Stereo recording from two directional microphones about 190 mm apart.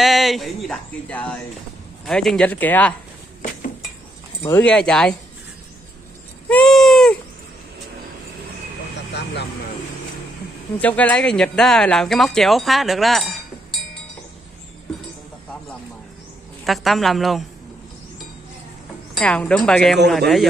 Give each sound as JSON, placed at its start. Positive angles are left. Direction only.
{"t": 0.0, "sound": "speech", "side_deg": 0}
{"t": 4.4, "sound": "speech", "side_deg": 10}
{"t": 6.5, "sound": "a sound", "side_deg": 5}
{"t": 9.1, "sound": "vehicle", "side_deg": 60}
{"t": 10.8, "sound": "speech", "side_deg": 10}
{"t": 16.6, "sound": "speech", "side_deg": 0}
{"t": 19.1, "sound": "speech", "side_deg": 5}